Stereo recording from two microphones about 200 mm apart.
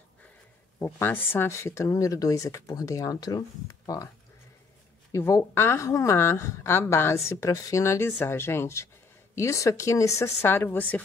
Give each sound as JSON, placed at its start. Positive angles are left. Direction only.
{"t": 0.7, "sound": "a woman's voice", "side_deg": 10}
{"t": 5.1, "sound": "a woman's voice", "side_deg": 15}